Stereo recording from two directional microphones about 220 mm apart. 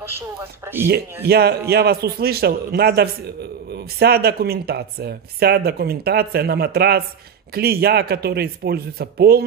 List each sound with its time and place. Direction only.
0.1 s speech: 10° right (ahead or behind)
0.8 s speech: 45° right (ahead or behind)